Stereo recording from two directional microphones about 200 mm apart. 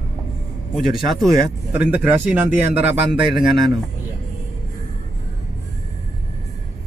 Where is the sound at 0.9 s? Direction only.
Centre (ahead or behind).